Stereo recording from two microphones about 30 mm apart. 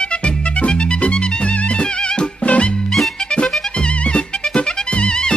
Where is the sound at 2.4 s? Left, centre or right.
Left.